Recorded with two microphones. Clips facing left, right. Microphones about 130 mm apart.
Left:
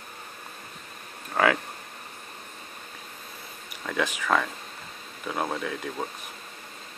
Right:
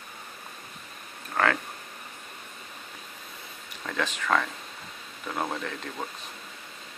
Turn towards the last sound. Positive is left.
turn(degrees=5)  # may be behind; listen again after turning